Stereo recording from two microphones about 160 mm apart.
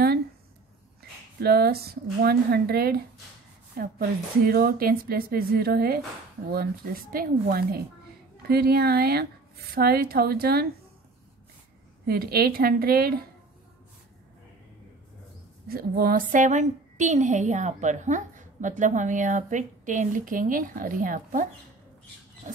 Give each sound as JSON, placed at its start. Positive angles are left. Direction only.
{"t": 1.4, "sound": "a woman's voice", "side_deg": -75}
{"t": 12.1, "sound": "speech", "side_deg": -70}
{"t": 15.7, "sound": "a woman's voice", "side_deg": -65}